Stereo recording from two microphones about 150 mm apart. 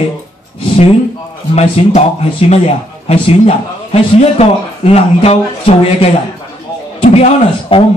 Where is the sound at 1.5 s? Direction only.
45° left (ahead or behind).